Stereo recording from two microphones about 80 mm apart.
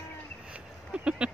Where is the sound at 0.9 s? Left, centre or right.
Centre.